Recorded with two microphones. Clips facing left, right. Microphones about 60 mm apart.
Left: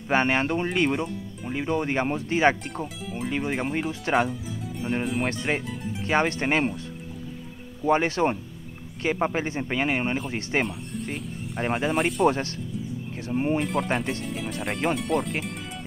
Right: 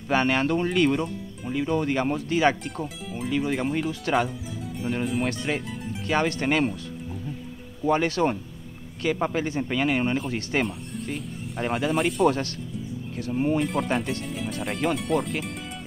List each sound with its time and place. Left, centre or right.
0.1 s speech: left
2.7 s speech: centre
3.9 s speech: left
4.3 s music: centre
5.0 s speech: centre
5.3 s speech: left
7.8 s speech: left
10.6 s music: centre
11.6 s speech: left
11.9 s speech: centre
12.3 s speech: left
13.6 s speech: centre